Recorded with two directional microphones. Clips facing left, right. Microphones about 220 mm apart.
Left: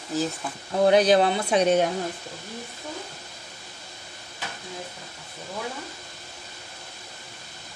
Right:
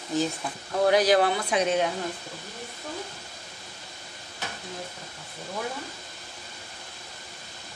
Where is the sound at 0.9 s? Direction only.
25° left (ahead or behind).